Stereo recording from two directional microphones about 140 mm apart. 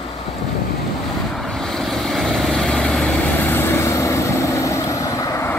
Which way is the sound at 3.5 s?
20° left (ahead or behind).